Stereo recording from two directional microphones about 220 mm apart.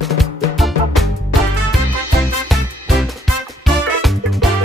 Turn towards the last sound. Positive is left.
turn(degrees=0)  # may be behind; listen again after turning